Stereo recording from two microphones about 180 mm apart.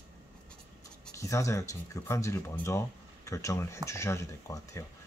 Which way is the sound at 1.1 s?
15° left (ahead or behind).